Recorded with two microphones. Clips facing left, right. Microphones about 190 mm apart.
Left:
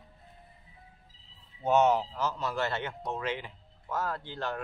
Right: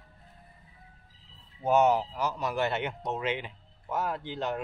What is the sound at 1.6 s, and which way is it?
Speech, 10° right (ahead or behind).